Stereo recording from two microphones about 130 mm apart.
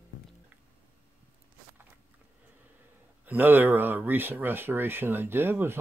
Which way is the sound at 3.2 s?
15° right (ahead or behind).